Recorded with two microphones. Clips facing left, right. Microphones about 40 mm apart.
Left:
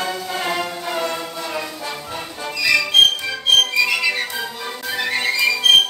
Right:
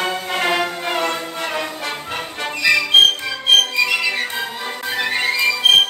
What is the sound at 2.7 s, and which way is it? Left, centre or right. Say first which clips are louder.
Music: right 1 dB; right.